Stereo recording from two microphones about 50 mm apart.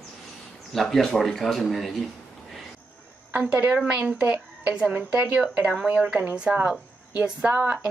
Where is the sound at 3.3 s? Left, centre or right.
Right.